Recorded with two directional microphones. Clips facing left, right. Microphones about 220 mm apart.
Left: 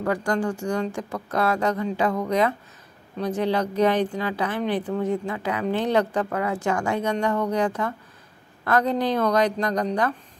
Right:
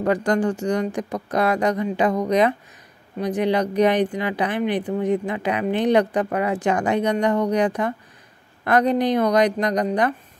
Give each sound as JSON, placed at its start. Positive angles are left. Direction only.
{"t": 0.0, "sound": "speech", "side_deg": -20}